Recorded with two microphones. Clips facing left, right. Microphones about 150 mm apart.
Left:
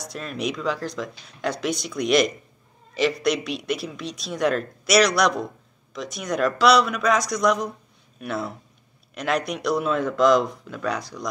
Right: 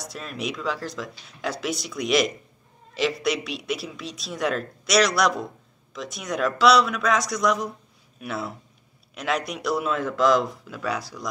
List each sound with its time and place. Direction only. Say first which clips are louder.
0.0 s a woman's voice: left 3 dB; centre (ahead or behind)